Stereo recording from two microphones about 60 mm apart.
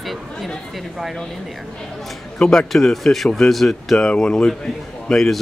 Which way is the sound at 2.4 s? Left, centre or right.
Centre.